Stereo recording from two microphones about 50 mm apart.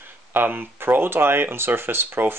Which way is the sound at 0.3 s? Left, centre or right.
Right.